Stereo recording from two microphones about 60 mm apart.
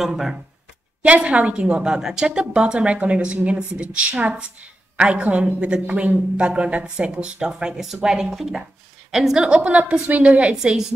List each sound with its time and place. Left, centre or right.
0.0 s speech: centre
1.0 s a woman's voice: centre
10.5 s speech: centre